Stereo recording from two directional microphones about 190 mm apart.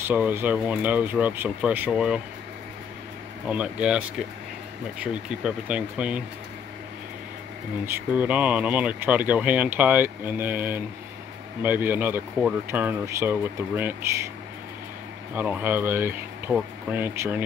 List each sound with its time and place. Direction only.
0.0 s speech: 10° right (ahead or behind)
3.4 s speech: 5° right (ahead or behind)
5.0 s speech: 5° right (ahead or behind)
7.8 s speech: 10° right (ahead or behind)
15.3 s speech: 10° right (ahead or behind)